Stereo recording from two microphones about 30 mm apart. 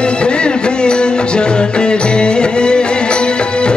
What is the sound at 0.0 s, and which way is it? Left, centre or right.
Music, left.